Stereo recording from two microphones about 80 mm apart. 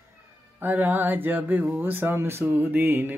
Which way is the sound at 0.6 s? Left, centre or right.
Right.